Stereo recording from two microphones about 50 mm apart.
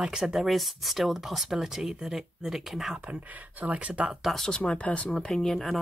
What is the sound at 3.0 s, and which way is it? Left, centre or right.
Speech, right.